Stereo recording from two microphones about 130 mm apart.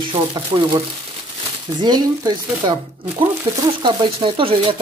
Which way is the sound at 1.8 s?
30° right (ahead or behind).